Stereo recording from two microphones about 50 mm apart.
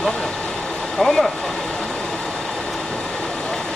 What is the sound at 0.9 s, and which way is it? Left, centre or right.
Speech, centre.